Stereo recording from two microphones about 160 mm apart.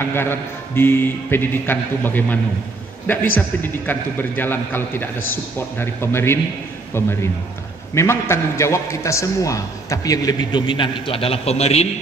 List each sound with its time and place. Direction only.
0.1 s a man's voice: 15° left (ahead or behind)
3.3 s a man's voice: 10° left (ahead or behind); by 11.9 s 40° left (ahead or behind)